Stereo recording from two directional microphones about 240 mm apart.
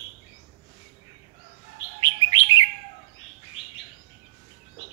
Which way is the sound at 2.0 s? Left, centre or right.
Centre.